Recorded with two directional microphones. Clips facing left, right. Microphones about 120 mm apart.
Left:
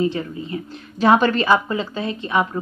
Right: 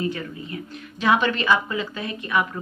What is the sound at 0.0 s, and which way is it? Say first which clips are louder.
A woman's voice: left 6 dB; 30° left (ahead or behind).